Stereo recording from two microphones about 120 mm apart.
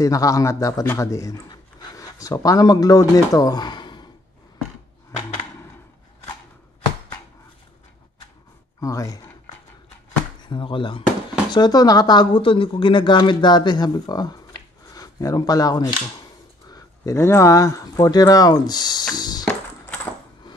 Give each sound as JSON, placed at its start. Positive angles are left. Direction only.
{"t": 0.0, "sound": "a man's voice", "side_deg": 30}
{"t": 8.8, "sound": "a man's voice", "side_deg": 30}
{"t": 10.5, "sound": "speech", "side_deg": 45}